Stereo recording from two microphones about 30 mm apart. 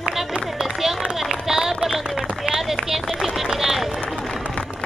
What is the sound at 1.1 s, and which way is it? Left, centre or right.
Run, centre.